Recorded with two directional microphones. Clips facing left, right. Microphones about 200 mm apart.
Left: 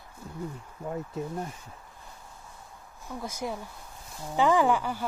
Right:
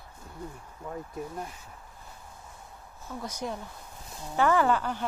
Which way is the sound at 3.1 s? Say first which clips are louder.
Left 1 dB; 10° left (ahead or behind).